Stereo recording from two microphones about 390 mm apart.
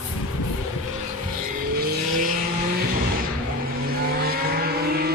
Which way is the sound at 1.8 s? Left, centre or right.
Right.